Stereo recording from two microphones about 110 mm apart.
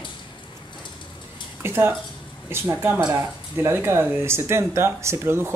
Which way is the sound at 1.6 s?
20° right (ahead or behind).